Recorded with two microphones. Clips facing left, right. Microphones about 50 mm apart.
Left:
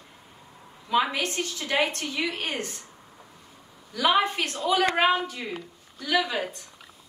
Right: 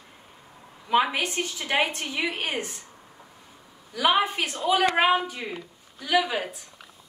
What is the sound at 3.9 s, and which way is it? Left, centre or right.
Speech, centre.